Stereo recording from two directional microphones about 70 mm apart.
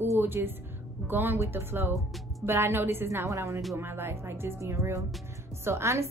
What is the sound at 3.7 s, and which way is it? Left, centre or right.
Speech, right.